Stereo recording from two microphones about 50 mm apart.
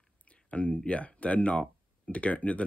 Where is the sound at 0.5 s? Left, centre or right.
Left.